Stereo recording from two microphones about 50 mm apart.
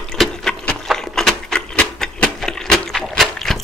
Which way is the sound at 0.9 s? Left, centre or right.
Centre.